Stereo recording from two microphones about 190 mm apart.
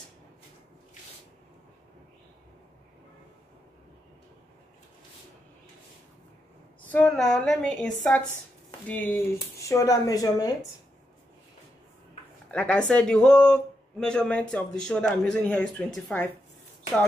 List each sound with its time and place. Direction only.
6.9 s speech: 5° left (ahead or behind)
12.4 s speech: 5° left (ahead or behind)